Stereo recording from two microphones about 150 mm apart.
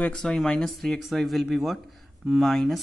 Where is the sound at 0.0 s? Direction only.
5° left (ahead or behind).